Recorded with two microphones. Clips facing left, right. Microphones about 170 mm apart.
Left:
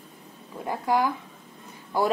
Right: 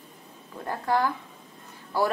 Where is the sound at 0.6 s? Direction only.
15° left (ahead or behind).